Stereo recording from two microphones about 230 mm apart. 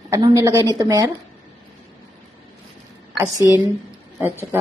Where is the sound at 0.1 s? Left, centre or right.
Centre.